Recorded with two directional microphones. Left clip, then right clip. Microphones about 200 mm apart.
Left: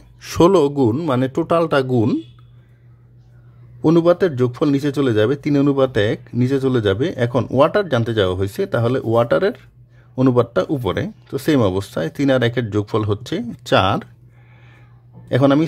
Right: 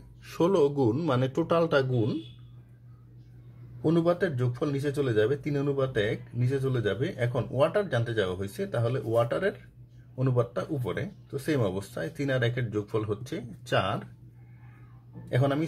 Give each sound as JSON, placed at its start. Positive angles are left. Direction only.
{"t": 0.2, "sound": "a man's voice", "side_deg": 50}
{"t": 3.8, "sound": "speech", "side_deg": 55}
{"t": 15.2, "sound": "speech", "side_deg": 55}